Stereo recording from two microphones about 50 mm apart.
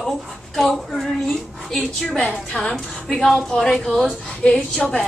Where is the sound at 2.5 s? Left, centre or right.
Centre.